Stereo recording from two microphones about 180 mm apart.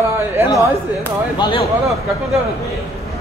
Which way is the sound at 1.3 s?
25° left (ahead or behind).